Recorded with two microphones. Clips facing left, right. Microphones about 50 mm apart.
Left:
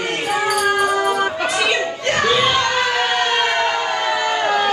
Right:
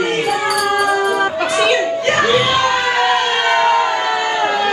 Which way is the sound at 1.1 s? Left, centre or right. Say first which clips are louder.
Right 3 dB; right.